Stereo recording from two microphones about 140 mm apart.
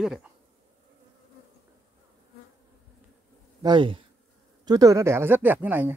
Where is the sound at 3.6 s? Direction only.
35° right (ahead or behind); by 5.9 s 15° right (ahead or behind).